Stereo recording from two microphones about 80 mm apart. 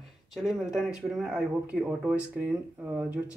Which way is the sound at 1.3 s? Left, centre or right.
Centre.